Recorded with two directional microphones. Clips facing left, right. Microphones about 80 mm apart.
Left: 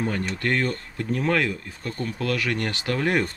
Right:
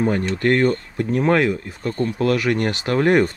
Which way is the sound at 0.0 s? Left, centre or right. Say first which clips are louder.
Right 7 dB; right.